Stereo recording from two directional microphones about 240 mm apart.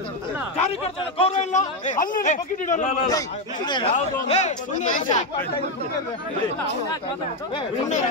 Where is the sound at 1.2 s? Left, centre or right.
Left.